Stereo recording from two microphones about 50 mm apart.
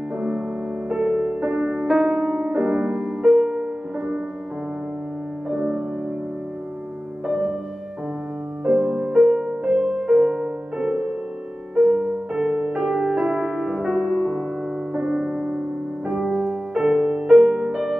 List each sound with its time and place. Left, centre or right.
0.8 s music: centre
1.5 s music: centre
5.5 s music: centre
7.2 s music: centre
8.6 s music: centre